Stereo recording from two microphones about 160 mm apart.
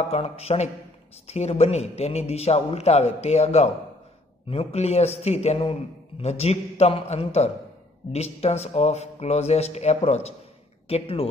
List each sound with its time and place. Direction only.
0.1 s a man's voice: 40° left (ahead or behind)